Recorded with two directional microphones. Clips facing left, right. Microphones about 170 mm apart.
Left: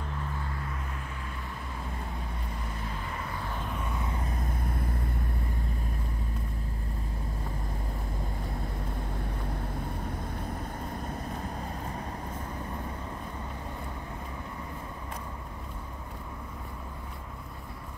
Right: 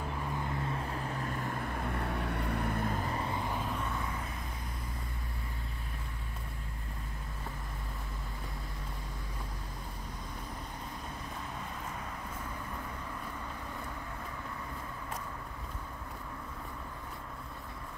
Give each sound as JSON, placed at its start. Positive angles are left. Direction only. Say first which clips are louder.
{"t": 1.2, "sound": "vehicle", "louder": "right 4 dB", "side_deg": -55}